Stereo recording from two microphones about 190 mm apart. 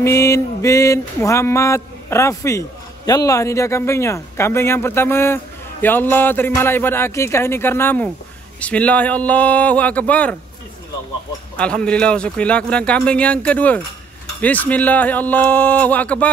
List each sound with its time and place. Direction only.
0.0 s speech: 15° left (ahead or behind)
11.5 s a man's voice: 5° left (ahead or behind)